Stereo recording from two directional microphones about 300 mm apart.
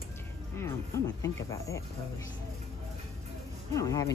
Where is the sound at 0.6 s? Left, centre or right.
Centre.